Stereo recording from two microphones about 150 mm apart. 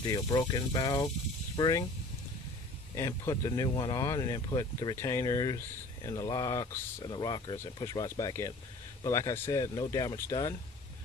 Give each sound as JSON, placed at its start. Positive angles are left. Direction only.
{"t": 0.0, "sound": "speech", "side_deg": 30}
{"t": 2.9, "sound": "speech", "side_deg": 20}